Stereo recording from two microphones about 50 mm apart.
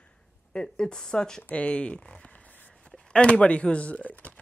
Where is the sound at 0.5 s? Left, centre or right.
Centre.